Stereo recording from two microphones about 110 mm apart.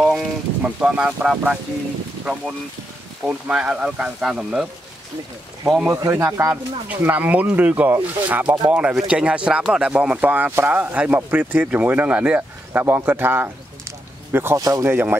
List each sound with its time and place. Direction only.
0.0 s speech: 5° right (ahead or behind)
3.3 s speech: 10° right (ahead or behind)
5.9 s speech: 25° right (ahead or behind)